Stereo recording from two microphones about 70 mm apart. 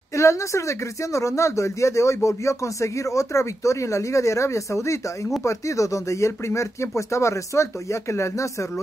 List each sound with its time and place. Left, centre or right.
0.1 s speech: left